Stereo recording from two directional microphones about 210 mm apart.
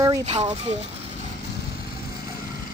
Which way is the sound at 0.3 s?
30° right (ahead or behind).